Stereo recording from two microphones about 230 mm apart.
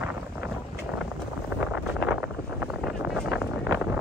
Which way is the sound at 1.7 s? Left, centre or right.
Centre.